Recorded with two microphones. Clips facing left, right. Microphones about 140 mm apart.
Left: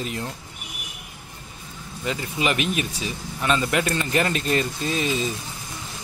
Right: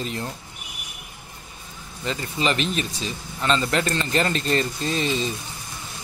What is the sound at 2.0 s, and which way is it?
Speech, 10° left (ahead or behind).